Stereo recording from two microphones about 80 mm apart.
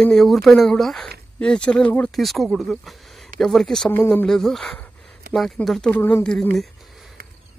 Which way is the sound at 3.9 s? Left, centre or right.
Left.